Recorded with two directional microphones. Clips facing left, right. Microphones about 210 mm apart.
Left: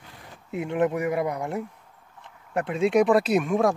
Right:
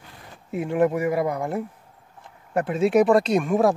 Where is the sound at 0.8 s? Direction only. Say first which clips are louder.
Right 3 dB; 35° right (ahead or behind).